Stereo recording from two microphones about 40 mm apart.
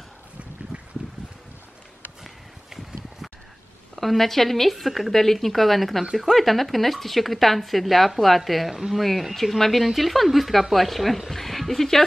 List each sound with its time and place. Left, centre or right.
0.7 s a sound: right
2.2 s walk: centre
3.9 s speech: centre